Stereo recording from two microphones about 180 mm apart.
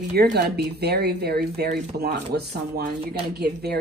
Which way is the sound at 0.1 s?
65° right (ahead or behind).